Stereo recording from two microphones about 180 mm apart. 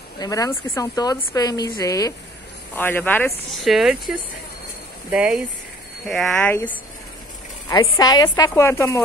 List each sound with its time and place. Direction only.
0.2 s a woman's voice: 20° left (ahead or behind)
3.6 s speech: centre (ahead or behind)
8.0 s a woman's voice: 20° left (ahead or behind)